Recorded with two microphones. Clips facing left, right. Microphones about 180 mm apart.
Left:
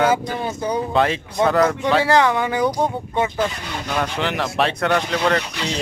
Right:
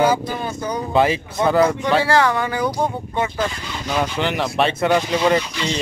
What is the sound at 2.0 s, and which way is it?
Speech, 15° left (ahead or behind).